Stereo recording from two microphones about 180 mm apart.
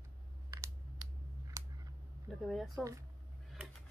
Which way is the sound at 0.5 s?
15° right (ahead or behind).